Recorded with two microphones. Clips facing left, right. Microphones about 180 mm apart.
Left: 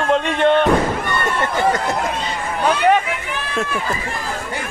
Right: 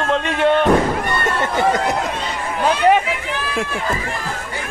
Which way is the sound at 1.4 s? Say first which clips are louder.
Right 1 dB; 20° right (ahead or behind).